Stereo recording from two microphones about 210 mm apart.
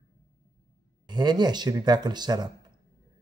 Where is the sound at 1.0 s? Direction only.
20° right (ahead or behind).